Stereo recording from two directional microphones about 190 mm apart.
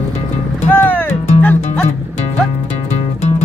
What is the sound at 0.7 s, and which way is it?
Music, 10° left (ahead or behind).